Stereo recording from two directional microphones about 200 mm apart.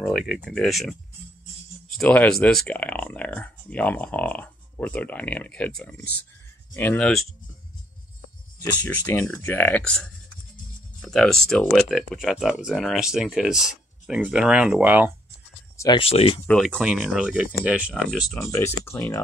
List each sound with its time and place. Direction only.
0.0 s speech: centre (ahead or behind)
8.8 s speech: 10° left (ahead or behind); by 15.1 s 10° right (ahead or behind)
15.8 s speech: 25° left (ahead or behind)
16.4 s speech: 5° left (ahead or behind)
18.4 s speech: 15° left (ahead or behind)